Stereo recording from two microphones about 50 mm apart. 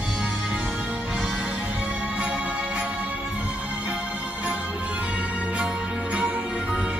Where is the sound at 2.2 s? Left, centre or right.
Right.